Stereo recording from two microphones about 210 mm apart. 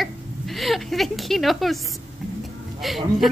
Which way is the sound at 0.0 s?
Centre (ahead or behind).